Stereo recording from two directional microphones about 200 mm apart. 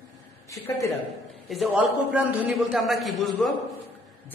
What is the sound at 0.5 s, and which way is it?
Speech, 15° left (ahead or behind).